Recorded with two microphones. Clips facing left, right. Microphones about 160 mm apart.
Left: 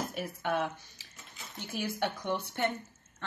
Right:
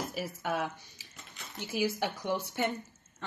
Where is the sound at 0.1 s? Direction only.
Centre (ahead or behind).